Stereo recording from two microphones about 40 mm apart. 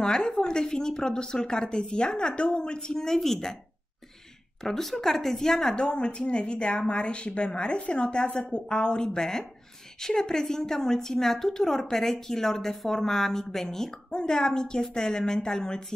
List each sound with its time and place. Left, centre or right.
0.0 s a woman's voice: centre
4.6 s a woman's voice: centre
5.8 s a woman's voice: left